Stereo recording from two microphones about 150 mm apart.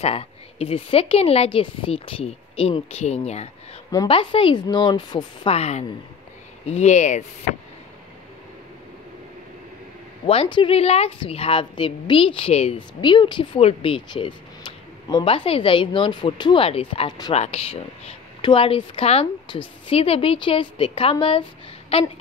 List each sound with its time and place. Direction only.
0.0 s a woman's voice: 40° left (ahead or behind)
4.1 s a woman's voice: 35° left (ahead or behind)
5.5 s speech: 45° left (ahead or behind)
10.2 s a woman's voice: 40° left (ahead or behind)